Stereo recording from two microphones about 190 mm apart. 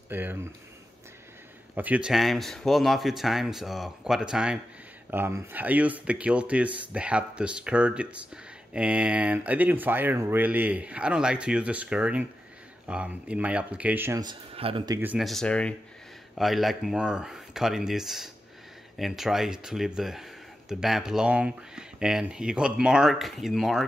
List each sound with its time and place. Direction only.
0.1 s speech: 10° right (ahead or behind)
1.8 s speech: 5° right (ahead or behind)
14.2 s speech: 30° right (ahead or behind)
15.0 s speech: 5° right (ahead or behind)